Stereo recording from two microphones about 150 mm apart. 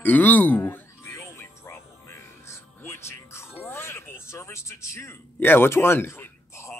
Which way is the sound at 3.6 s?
15° left (ahead or behind).